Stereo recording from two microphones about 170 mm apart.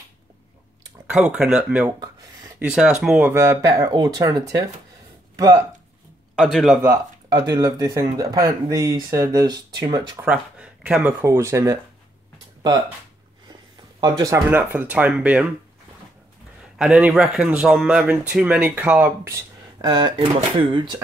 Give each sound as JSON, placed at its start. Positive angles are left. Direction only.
{"t": 1.0, "sound": "speech", "side_deg": -5}
{"t": 1.9, "sound": "a sound", "side_deg": -20}
{"t": 2.6, "sound": "speech", "side_deg": -5}
{"t": 6.3, "sound": "a man's voice", "side_deg": 0}
{"t": 6.8, "sound": "speech", "side_deg": -20}
{"t": 10.1, "sound": "speech", "side_deg": -5}
{"t": 13.9, "sound": "speech", "side_deg": -25}
{"t": 16.7, "sound": "speech", "side_deg": -5}